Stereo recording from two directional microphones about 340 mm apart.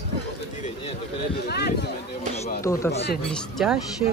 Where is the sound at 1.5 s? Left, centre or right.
Left.